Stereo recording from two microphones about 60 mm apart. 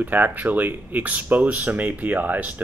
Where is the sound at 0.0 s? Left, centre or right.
Right.